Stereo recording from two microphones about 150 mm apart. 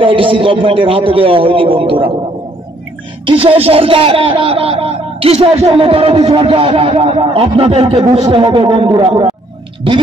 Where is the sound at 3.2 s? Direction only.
35° right (ahead or behind).